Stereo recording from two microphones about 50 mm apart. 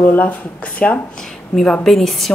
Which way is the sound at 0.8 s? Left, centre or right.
Centre.